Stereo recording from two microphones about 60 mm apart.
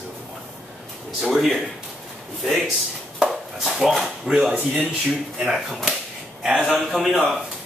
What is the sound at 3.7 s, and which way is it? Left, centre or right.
Speech, centre.